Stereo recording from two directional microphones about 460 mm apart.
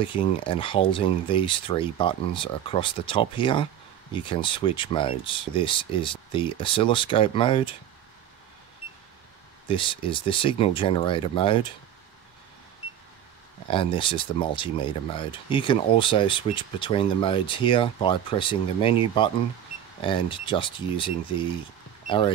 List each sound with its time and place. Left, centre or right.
0.0 s speech: centre
9.7 s speech: centre
13.7 s speech: centre